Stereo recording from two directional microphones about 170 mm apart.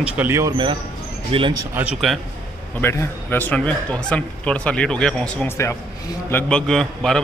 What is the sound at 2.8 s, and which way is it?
Speech, 15° left (ahead or behind).